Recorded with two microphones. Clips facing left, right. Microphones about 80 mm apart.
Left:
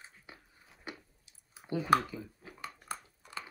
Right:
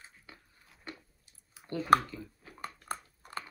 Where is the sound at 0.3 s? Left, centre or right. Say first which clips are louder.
Left 1 dB; centre.